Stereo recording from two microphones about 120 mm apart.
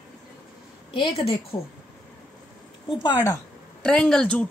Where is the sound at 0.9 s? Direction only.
45° left (ahead or behind).